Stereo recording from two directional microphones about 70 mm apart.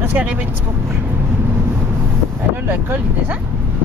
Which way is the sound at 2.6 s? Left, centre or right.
Right.